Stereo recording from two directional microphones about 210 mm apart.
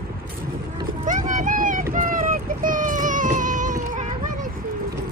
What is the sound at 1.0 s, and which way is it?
Vehicle, 40° right (ahead or behind).